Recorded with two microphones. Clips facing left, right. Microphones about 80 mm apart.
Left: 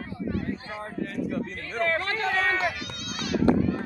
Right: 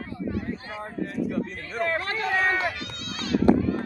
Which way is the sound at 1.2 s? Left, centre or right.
Centre.